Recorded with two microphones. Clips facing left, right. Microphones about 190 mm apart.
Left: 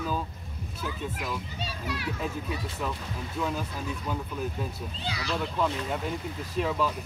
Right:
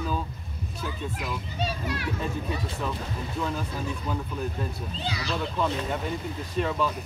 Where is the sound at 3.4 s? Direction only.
5° left (ahead or behind).